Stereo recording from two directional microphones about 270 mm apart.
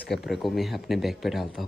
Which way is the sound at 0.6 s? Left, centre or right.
Centre.